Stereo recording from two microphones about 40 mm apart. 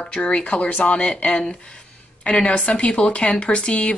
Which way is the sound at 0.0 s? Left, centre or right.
Left.